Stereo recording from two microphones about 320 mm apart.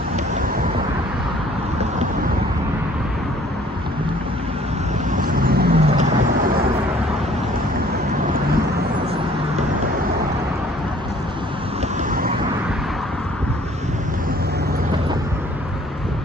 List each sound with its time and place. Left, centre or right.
5.1 s vehicle: right